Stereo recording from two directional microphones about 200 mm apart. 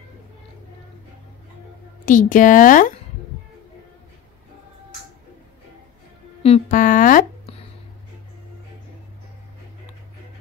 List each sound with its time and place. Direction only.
2.0 s a woman's voice: 40° left (ahead or behind)
6.4 s speech: 35° left (ahead or behind)